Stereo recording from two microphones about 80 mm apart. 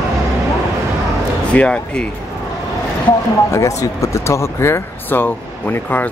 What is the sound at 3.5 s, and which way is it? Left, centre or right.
Speech, left.